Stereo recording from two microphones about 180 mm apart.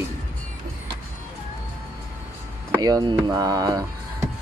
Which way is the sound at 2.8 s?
20° right (ahead or behind).